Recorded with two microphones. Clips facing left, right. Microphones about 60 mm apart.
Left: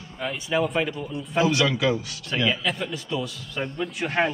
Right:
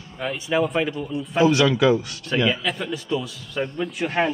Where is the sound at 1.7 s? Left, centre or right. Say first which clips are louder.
Right 5 dB; right.